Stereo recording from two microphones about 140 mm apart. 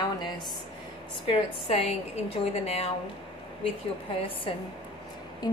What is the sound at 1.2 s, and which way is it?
A woman's voice, 45° left (ahead or behind).